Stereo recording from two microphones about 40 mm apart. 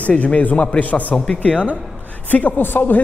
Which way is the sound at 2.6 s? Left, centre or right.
Left.